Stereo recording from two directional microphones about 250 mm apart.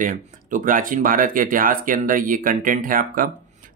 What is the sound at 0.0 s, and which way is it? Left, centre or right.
Speech, right.